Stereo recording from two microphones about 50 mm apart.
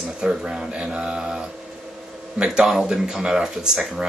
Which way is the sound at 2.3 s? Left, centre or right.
Centre.